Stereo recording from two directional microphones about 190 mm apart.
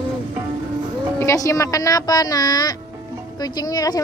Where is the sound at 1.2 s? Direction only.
15° left (ahead or behind).